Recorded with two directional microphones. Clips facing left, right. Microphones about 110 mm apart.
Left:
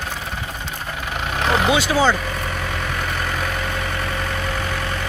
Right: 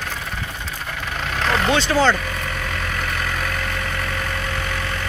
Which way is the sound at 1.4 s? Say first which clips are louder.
Left 1 dB; 15° left (ahead or behind).